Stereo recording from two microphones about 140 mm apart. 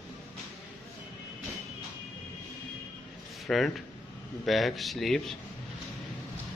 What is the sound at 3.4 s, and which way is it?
A man's voice, centre (ahead or behind).